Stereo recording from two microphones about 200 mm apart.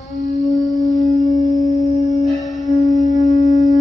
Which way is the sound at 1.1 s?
35° left (ahead or behind).